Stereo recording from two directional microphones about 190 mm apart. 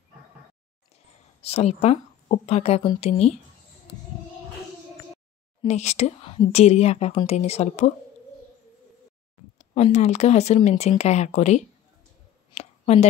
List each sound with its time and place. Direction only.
1.4 s a woman's voice: 35° left (ahead or behind)
5.7 s a woman's voice: 35° left (ahead or behind)
9.6 s a woman's voice: 35° left (ahead or behind)
12.5 s a sound: 35° left (ahead or behind)